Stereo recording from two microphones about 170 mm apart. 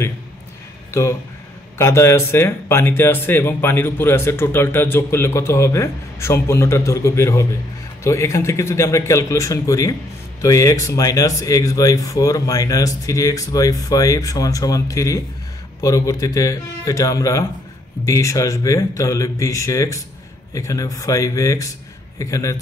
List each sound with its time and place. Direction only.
1.8 s speech: 15° left (ahead or behind)